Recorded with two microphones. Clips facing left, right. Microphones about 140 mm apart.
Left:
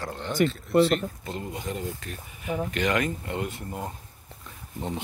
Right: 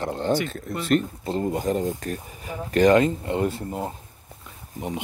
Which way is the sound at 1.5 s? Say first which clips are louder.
Right 9 dB; 45° right (ahead or behind).